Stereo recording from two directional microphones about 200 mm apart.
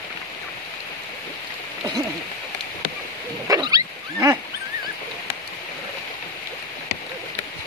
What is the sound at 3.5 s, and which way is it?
Wild animals, 15° right (ahead or behind).